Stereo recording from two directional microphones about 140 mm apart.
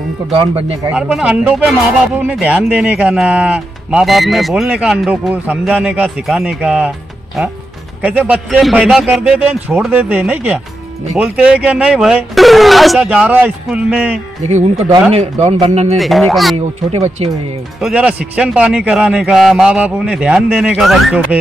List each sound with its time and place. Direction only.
0.3 s speech: 40° right (ahead or behind)
0.8 s speech: 10° right (ahead or behind)
8.0 s speech: 10° right (ahead or behind)
14.4 s speech: 50° right (ahead or behind)
16.0 s speech: centre (ahead or behind)
16.5 s speech: 50° right (ahead or behind)
17.7 s speech: 5° right (ahead or behind)